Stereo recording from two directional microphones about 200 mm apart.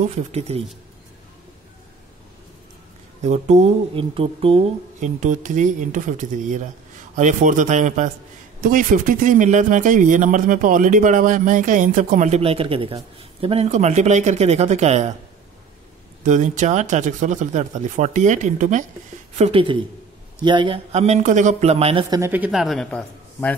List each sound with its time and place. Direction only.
0.3 s speech: 30° right (ahead or behind)
3.2 s speech: 35° right (ahead or behind)
16.3 s speech: 40° right (ahead or behind)
19.3 s a woman's voice: 30° right (ahead or behind)
22.1 s a man's voice: 10° right (ahead or behind); by 23.5 s 5° left (ahead or behind)